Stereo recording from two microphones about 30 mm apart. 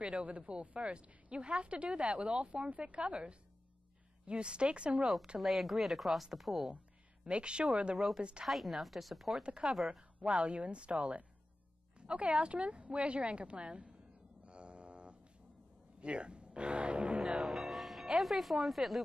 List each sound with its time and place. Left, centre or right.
0.0 s speech: right
0.5 s speech: right
5.4 s speech: centre
7.2 s speech: right
8.5 s speech: centre
9.4 s speech: right
14.4 s vehicle: right
16.0 s a man's voice: right
17.2 s music: centre
18.2 s speech: centre